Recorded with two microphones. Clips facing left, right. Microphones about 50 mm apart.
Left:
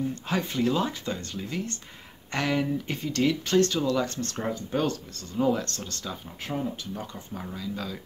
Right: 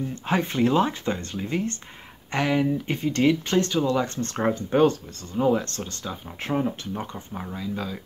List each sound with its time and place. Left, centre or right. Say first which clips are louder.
0.1 s speech: right 4 dB; right
2.3 s speech: right 4 dB; centre
2.9 s speech: right 5 dB; right
4.4 s speech: right 8 dB; right; by 6.1 s centre
6.4 s speech: right 6 dB; right
6.9 s speech: right 4 dB; right